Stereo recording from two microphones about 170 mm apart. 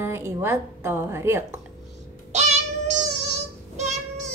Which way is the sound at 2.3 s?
40° right (ahead or behind).